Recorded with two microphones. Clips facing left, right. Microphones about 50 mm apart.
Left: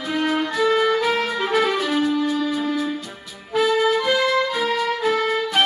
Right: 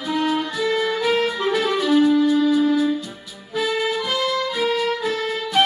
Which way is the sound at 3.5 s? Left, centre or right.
Left.